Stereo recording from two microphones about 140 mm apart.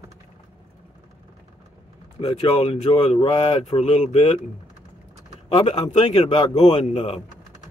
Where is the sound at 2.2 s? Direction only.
40° left (ahead or behind).